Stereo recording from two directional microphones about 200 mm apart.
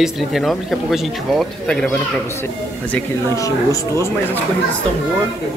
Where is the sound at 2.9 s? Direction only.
15° left (ahead or behind).